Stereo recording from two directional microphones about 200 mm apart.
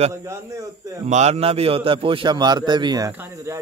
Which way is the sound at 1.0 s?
35° right (ahead or behind).